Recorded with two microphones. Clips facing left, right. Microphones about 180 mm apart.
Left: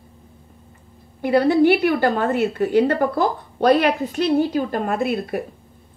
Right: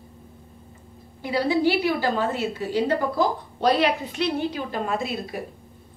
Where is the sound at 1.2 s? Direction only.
55° left (ahead or behind).